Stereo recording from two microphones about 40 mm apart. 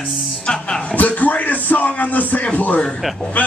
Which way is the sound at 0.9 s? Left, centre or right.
Left.